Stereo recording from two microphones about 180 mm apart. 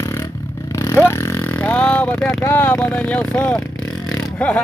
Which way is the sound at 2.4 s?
10° left (ahead or behind).